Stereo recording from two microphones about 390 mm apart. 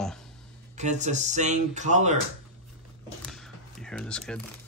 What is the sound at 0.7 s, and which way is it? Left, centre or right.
Speech, centre.